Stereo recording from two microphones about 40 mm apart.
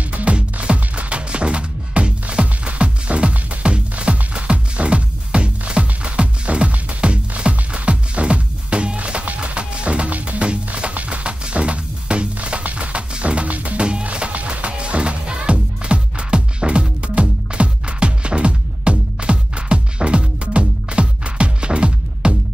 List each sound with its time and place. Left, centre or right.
0.1 s music: right
10.4 s music: right